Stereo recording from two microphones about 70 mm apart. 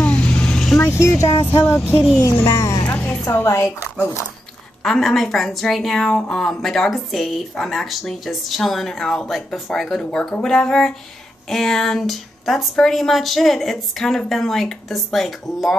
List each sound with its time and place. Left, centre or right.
0.0 s vehicle: centre
0.7 s a woman's voice: left
4.8 s a woman's voice: centre
10.4 s a sound: centre
11.4 s a woman's voice: centre